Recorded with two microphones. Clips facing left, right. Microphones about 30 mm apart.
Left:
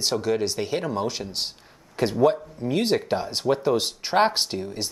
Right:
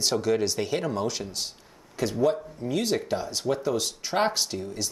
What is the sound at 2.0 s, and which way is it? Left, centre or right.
Speech, left.